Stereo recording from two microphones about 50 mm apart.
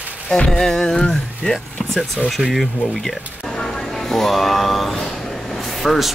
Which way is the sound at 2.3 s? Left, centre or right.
Centre.